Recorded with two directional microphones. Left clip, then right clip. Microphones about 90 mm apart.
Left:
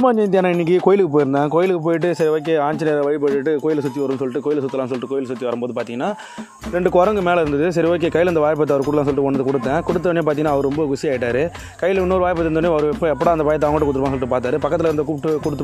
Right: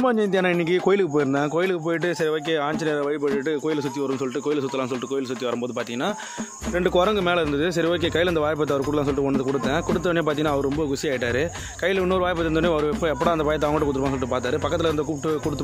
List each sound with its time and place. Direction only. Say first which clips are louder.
0.0 s speech: left 5 dB; 45° left (ahead or behind)
1.1 s speech: left 6 dB; centre (ahead or behind)
1.4 s speech: left 6 dB; 45° left (ahead or behind)
6.8 s speech: left 5 dB; 40° left (ahead or behind)
10.0 s speech: left 5 dB; 45° left (ahead or behind)